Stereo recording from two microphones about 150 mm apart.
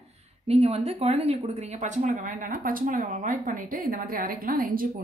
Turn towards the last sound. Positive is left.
turn(degrees=-70)  # may be behind; listen again after turning